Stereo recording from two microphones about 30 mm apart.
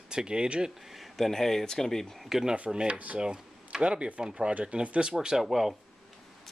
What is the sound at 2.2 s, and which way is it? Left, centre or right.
Speech, centre.